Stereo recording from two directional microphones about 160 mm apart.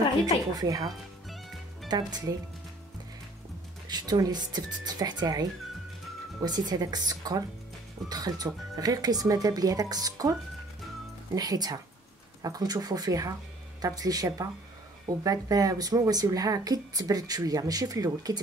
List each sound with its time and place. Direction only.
0.6 s speech: 20° right (ahead or behind)
0.8 s music: centre (ahead or behind)
1.9 s speech: 25° right (ahead or behind)
3.9 s speech: 25° right (ahead or behind)
11.3 s speech: 25° right (ahead or behind)